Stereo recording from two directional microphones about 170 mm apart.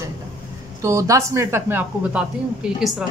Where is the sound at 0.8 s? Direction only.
20° right (ahead or behind).